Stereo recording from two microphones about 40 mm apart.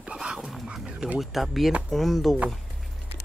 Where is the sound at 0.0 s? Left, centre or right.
Right.